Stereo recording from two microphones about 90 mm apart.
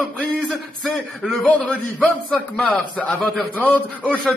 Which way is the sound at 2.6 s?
15° left (ahead or behind).